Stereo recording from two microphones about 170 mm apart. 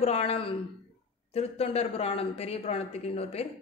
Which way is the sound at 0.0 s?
35° left (ahead or behind).